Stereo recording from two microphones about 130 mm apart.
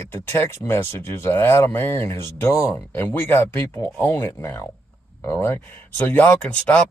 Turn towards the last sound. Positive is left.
turn(degrees=10)  # may be behind; listen again after turning